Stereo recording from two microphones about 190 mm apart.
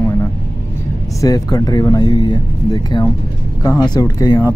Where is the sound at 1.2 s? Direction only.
20° left (ahead or behind).